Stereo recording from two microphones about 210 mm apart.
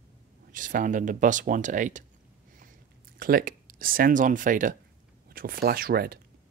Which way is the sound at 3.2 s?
45° right (ahead or behind).